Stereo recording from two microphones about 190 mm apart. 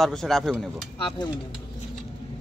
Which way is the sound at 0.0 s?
Centre (ahead or behind).